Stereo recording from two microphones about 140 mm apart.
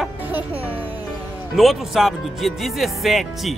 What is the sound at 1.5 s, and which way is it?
Speech, centre (ahead or behind).